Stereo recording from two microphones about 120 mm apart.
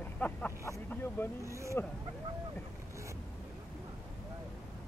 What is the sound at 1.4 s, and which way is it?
Speech, 25° right (ahead or behind).